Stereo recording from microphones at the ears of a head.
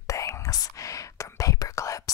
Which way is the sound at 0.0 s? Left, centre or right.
Left.